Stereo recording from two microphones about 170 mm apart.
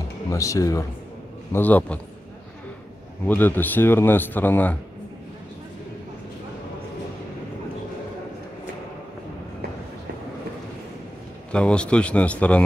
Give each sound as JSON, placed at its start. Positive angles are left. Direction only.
{"t": 0.3, "sound": "a man's voice", "side_deg": 20}
{"t": 3.3, "sound": "a man's voice", "side_deg": 10}
{"t": 11.5, "sound": "a man's voice", "side_deg": 5}